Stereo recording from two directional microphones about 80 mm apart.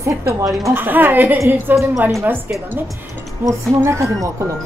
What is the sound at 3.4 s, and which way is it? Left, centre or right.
Speech, right.